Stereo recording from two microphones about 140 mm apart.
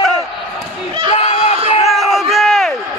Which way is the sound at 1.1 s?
45° left (ahead or behind).